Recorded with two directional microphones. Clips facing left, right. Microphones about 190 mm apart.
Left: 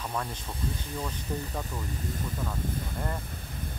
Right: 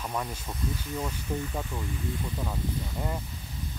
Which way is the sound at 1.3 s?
5° right (ahead or behind).